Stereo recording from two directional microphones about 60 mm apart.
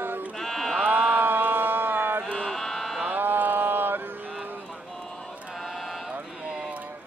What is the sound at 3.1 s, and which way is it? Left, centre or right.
Mantra, right.